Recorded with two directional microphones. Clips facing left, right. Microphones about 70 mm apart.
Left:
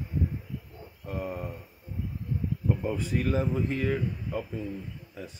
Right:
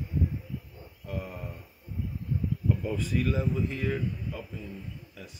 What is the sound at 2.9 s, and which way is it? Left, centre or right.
Speech, left.